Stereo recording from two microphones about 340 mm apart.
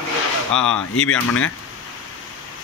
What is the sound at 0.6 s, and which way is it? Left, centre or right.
Speech, left.